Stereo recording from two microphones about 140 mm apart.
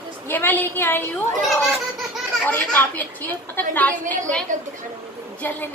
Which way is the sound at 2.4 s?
10° left (ahead or behind).